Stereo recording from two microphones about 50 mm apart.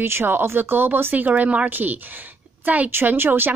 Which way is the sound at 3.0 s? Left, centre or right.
Right.